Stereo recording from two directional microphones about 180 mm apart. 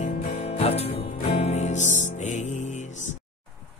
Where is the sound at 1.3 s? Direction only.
35° left (ahead or behind).